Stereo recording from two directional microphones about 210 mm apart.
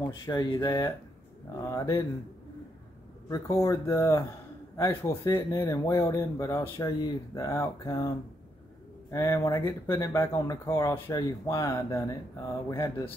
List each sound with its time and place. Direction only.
0.1 s speech: 20° left (ahead or behind)
3.3 s speech: 15° left (ahead or behind)